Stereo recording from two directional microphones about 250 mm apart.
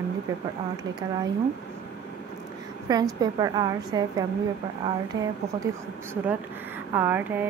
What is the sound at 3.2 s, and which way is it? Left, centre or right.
Speech, centre.